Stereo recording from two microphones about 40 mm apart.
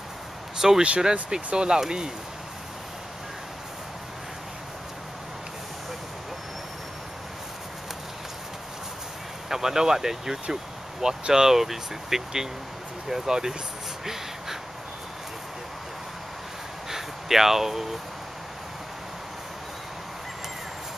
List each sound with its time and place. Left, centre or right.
0.6 s speech: centre
9.5 s speech: centre
16.9 s a sound: centre